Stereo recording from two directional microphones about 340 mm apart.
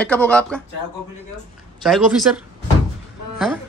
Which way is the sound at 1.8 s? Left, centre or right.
Centre.